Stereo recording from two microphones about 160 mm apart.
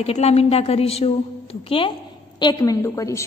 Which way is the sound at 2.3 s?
25° left (ahead or behind).